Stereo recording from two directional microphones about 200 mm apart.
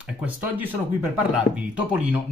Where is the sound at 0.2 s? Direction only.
10° right (ahead or behind).